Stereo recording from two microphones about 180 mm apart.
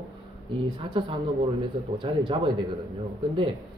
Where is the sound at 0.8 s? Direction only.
30° right (ahead or behind).